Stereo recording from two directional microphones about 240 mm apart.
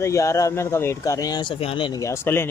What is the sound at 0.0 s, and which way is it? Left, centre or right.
Speech, centre.